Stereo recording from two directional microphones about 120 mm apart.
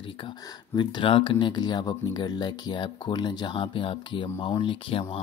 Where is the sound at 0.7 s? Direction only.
45° left (ahead or behind).